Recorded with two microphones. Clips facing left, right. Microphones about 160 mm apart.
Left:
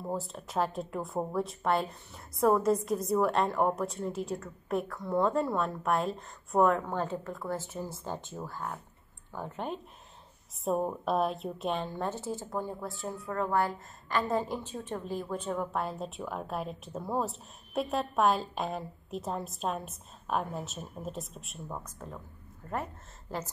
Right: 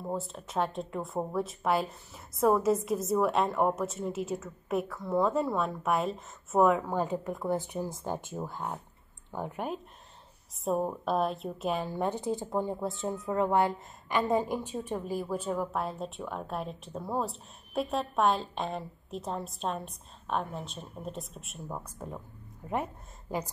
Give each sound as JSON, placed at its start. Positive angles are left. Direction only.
{"t": 0.0, "sound": "a woman's voice", "side_deg": 0}
{"t": 9.6, "sound": "a woman's voice", "side_deg": -10}